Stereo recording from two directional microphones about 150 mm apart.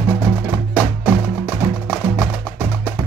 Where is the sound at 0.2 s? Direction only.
10° right (ahead or behind).